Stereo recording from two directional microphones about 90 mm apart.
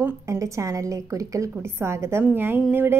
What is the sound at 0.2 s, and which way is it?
A woman's voice, 35° right (ahead or behind).